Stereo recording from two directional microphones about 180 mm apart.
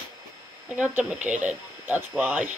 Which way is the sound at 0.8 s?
10° right (ahead or behind).